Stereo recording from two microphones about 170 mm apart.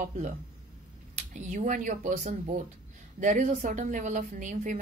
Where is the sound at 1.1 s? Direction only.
45° right (ahead or behind).